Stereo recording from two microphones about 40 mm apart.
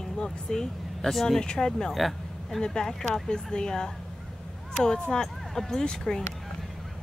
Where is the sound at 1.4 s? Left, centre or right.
Left.